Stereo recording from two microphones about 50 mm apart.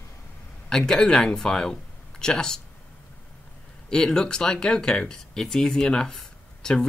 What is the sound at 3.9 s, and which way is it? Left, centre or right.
Speech, centre.